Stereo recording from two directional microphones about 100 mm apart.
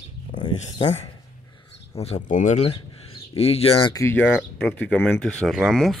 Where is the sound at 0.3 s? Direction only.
50° left (ahead or behind).